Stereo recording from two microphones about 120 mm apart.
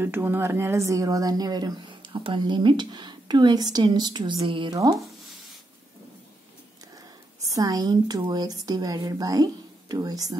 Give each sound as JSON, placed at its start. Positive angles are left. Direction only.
{"t": 0.0, "sound": "a woman's voice", "side_deg": -20}
{"t": 7.5, "sound": "a woman's voice", "side_deg": -30}